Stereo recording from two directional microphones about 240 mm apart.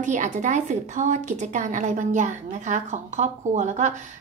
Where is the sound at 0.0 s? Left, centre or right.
Right.